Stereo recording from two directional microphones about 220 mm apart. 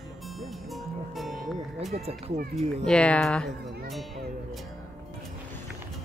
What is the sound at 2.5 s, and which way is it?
Speech, 5° left (ahead or behind).